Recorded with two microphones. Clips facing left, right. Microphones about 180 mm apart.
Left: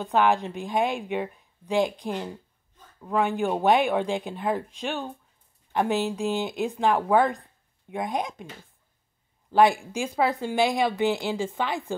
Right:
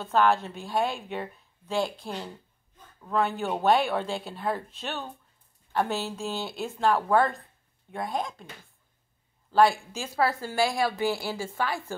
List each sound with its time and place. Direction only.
0.0 s a woman's voice: 15° left (ahead or behind)
9.5 s a woman's voice: 20° left (ahead or behind)